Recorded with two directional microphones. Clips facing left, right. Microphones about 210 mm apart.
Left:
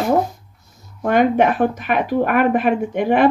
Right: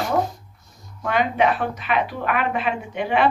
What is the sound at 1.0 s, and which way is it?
Speech, 50° left (ahead or behind).